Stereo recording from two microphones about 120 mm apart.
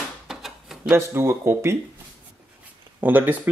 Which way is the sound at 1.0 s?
20° right (ahead or behind).